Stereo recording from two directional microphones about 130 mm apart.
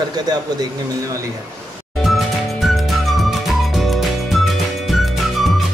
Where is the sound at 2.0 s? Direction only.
Centre (ahead or behind).